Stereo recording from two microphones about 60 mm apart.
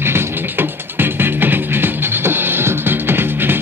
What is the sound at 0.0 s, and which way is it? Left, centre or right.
Music, right.